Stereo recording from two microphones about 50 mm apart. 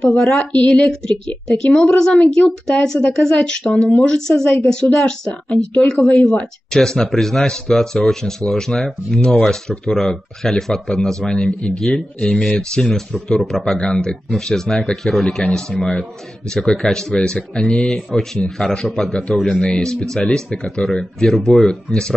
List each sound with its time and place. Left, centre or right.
0.1 s speech: centre